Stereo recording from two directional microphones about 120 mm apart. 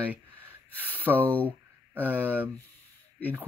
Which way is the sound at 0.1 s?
15° right (ahead or behind).